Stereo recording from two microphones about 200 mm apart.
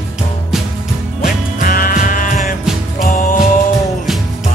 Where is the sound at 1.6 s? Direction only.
45° left (ahead or behind).